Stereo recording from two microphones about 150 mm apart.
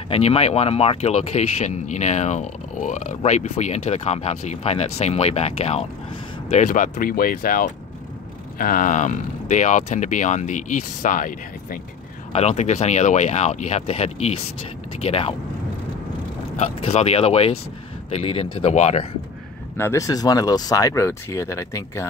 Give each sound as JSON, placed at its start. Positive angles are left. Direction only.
{"t": 0.1, "sound": "speech", "side_deg": 40}
{"t": 6.5, "sound": "speech", "side_deg": 55}
{"t": 12.3, "sound": "speech", "side_deg": 45}
{"t": 16.5, "sound": "speech", "side_deg": 45}
{"t": 19.8, "sound": "speech", "side_deg": 20}